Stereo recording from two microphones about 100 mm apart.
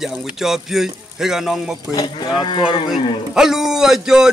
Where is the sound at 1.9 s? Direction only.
45° left (ahead or behind).